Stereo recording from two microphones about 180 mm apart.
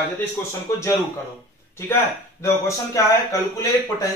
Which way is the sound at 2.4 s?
15° left (ahead or behind).